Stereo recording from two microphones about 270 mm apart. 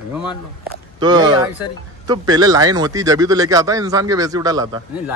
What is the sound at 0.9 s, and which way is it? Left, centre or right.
Speech, centre.